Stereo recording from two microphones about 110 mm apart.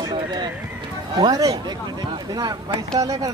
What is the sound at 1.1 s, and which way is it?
A man's voice, 35° right (ahead or behind).